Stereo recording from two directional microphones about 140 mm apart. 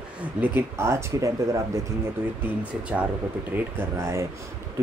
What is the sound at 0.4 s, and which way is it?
Speech, 15° right (ahead or behind).